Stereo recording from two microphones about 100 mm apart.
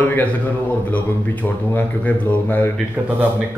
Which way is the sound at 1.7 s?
15° left (ahead or behind).